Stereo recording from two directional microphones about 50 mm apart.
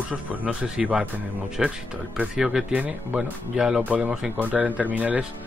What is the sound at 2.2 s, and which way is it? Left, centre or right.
Speech, right.